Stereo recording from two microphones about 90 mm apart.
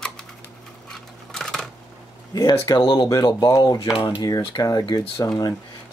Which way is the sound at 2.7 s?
65° left (ahead or behind).